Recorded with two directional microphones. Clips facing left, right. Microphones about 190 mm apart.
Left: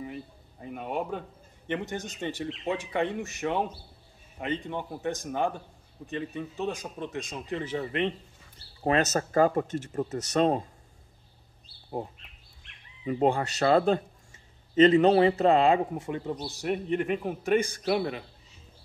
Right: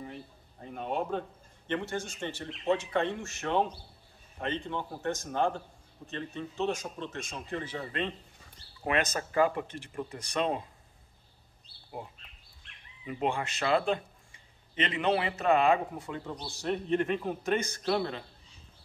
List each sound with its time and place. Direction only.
1.1 s speech: 10° left (ahead or behind)
8.8 s speech: 40° left (ahead or behind)
13.0 s speech: 40° left (ahead or behind); by 18.2 s 10° left (ahead or behind)